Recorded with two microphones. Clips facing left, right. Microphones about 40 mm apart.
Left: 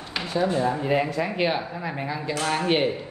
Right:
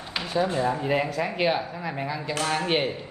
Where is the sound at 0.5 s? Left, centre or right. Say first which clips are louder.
Left 1 dB; right.